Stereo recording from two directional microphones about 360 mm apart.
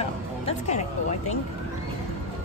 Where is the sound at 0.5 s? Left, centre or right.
Centre.